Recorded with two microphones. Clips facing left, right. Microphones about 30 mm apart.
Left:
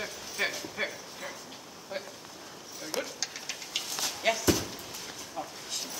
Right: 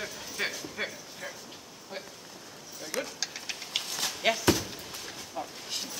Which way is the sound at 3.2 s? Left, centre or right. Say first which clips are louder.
Right 1 dB; centre.